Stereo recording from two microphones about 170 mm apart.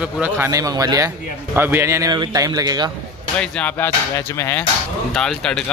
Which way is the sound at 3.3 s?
5° left (ahead or behind).